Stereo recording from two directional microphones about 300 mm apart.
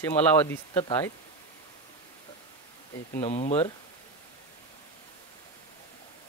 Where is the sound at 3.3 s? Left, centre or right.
Left.